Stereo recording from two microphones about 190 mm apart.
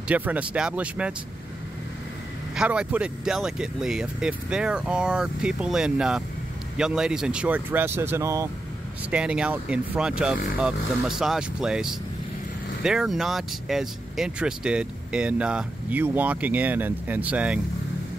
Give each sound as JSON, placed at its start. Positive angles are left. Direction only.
{"t": 0.1, "sound": "speech", "side_deg": -10}
{"t": 2.5, "sound": "speech", "side_deg": -5}
{"t": 9.1, "sound": "speech", "side_deg": -5}